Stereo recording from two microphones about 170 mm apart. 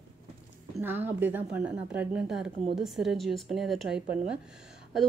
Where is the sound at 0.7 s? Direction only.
10° right (ahead or behind).